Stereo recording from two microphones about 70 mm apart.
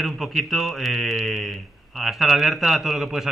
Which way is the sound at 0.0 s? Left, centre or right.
Centre.